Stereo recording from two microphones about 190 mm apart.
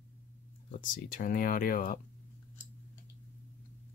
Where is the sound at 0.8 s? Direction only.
45° left (ahead or behind).